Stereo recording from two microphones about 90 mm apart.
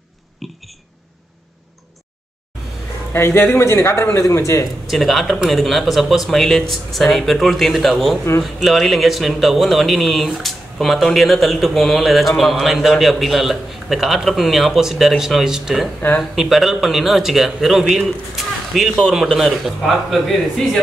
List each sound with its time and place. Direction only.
0.4 s speech: centre (ahead or behind)
3.1 s a man's voice: 25° left (ahead or behind)
4.8 s speech: centre (ahead or behind)